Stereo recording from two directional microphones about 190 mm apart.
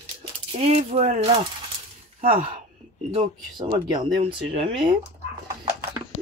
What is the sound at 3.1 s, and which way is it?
Speech, 25° right (ahead or behind).